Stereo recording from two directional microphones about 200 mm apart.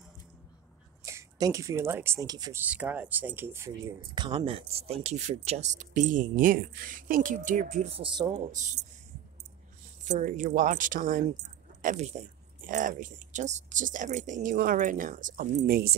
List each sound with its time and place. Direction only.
1.0 s speech: 15° right (ahead or behind)
2.6 s speech: 10° right (ahead or behind); by 8.3 s 25° right (ahead or behind)
8.5 s speech: 40° right (ahead or behind)
10.0 s speech: 40° right (ahead or behind)